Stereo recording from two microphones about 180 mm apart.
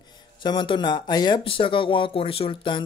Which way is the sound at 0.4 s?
25° left (ahead or behind).